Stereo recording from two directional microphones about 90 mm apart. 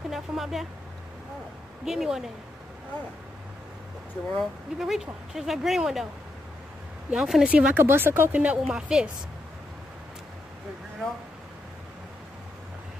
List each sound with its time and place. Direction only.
0.1 s a sound: 5° right (ahead or behind)
1.9 s speech: 5° right (ahead or behind)
4.4 s speech: 5° right (ahead or behind)
7.1 s speech: 5° right (ahead or behind)
7.5 s a woman's voice: 25° right (ahead or behind); by 9.1 s 10° right (ahead or behind)